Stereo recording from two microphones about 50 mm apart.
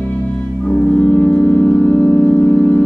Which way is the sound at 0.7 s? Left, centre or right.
Centre.